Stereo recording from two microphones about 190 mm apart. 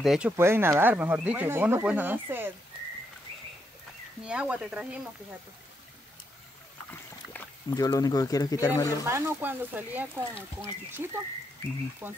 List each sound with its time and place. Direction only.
0.0 s speech: centre (ahead or behind)
0.4 s speech: 15° right (ahead or behind)
4.2 s speech: 5° right (ahead or behind)
7.3 s speech: 20° left (ahead or behind)
9.0 s speech: 15° right (ahead or behind)